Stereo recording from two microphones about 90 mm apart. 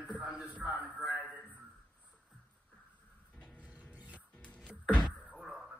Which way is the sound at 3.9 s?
15° right (ahead or behind).